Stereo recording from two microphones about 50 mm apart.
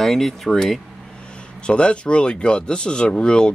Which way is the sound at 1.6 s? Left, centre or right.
Left.